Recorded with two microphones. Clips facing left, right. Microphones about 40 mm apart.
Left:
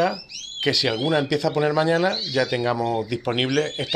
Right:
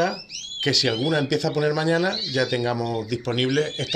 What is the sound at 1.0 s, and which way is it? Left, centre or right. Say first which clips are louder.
Speech: left 1 dB; left.